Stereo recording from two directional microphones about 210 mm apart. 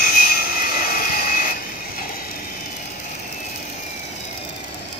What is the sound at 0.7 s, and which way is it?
Helicopter, 45° left (ahead or behind).